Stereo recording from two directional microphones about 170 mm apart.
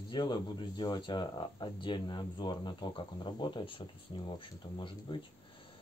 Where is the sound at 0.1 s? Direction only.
25° left (ahead or behind).